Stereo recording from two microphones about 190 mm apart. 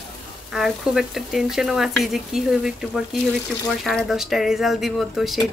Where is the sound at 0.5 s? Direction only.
Centre (ahead or behind).